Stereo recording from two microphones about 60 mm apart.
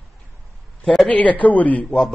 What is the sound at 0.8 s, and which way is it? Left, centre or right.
Speech, centre.